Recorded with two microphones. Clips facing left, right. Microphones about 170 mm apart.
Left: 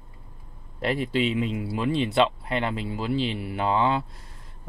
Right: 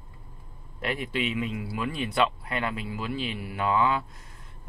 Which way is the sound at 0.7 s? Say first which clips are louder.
Left 5 dB; 30° left (ahead or behind).